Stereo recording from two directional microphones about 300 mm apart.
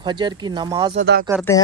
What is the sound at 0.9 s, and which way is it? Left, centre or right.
Speech, right.